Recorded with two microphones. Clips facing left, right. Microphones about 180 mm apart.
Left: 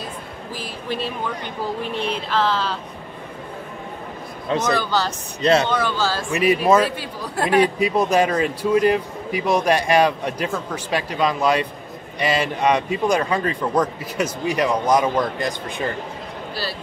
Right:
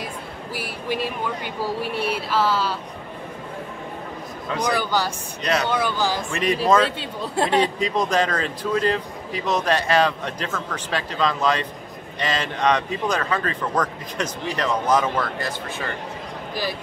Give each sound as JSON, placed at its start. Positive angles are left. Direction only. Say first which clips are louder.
{"t": 0.6, "sound": "speech", "louder": "right 1 dB", "side_deg": -10}
{"t": 4.6, "sound": "speech", "louder": "right 1 dB", "side_deg": -10}
{"t": 5.4, "sound": "speech", "louder": "left 6 dB", "side_deg": 25}
{"t": 5.7, "sound": "speech", "louder": "left 1 dB", "side_deg": -10}
{"t": 6.3, "sound": "speech", "louder": "left 9 dB", "side_deg": 5}
{"t": 7.0, "sound": "speech", "louder": "right 1 dB", "side_deg": -25}
{"t": 7.5, "sound": "speech", "louder": "left 6 dB", "side_deg": 10}